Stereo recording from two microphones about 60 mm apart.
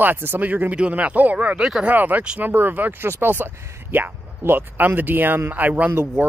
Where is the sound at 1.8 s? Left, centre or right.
Right.